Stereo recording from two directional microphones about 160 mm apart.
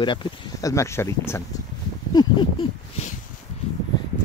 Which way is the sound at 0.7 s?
15° left (ahead or behind).